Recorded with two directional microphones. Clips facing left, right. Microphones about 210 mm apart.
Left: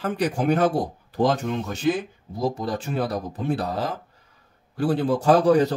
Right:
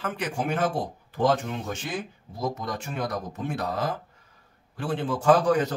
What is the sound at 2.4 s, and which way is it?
A man's voice, 30° left (ahead or behind).